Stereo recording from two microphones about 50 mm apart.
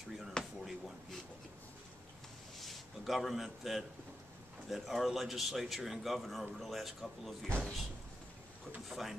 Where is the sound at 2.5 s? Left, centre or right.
Centre.